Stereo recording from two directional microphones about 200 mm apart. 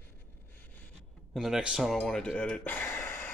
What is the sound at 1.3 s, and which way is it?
Speech, centre (ahead or behind).